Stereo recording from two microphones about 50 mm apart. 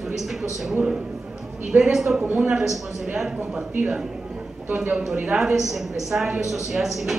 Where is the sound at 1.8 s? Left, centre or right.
Centre.